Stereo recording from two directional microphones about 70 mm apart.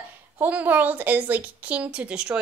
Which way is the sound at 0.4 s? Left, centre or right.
Right.